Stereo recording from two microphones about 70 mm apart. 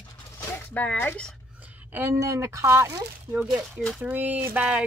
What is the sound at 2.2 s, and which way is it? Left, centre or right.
Speech, right.